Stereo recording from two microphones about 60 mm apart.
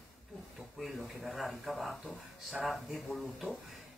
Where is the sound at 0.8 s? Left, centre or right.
Centre.